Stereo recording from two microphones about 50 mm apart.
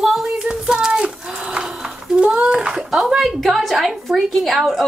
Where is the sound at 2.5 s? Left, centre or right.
Centre.